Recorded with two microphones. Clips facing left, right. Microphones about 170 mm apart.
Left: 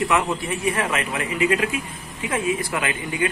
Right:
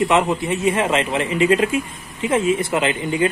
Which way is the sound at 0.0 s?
20° right (ahead or behind).